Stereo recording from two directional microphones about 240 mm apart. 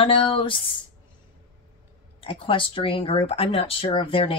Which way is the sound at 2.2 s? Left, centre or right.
Left.